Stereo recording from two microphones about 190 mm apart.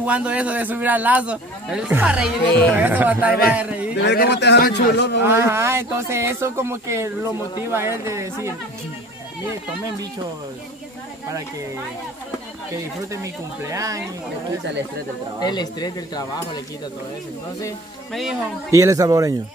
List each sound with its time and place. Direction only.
0.0 s speech: 5° right (ahead or behind)
3.9 s a man's voice: 60° left (ahead or behind)
5.2 s speech: 15° right (ahead or behind)
12.7 s speech: 15° right (ahead or behind)
15.4 s speech: 20° left (ahead or behind)
18.1 s speech: 5° right (ahead or behind)
18.7 s speech: 15° right (ahead or behind)